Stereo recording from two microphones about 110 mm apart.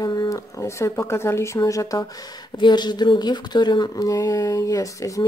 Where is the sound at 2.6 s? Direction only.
40° left (ahead or behind).